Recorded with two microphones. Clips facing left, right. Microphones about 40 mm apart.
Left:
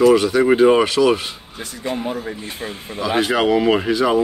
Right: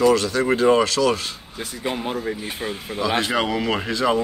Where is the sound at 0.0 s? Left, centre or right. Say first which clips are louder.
Left 5 dB; centre.